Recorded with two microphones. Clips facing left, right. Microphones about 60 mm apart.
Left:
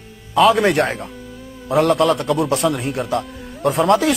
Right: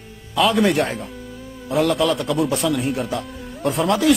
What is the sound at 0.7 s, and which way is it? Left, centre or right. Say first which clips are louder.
Speech: left 2 dB; left.